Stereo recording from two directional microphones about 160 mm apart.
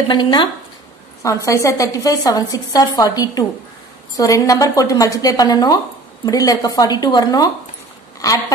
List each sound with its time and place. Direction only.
0.1 s a woman's voice: 25° left (ahead or behind)